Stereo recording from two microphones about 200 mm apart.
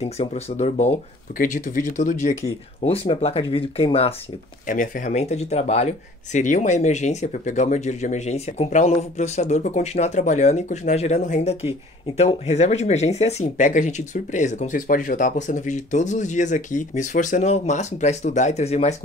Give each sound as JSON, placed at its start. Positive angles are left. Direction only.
{"t": 0.0, "sound": "speech", "side_deg": 30}
{"t": 4.6, "sound": "speech", "side_deg": 40}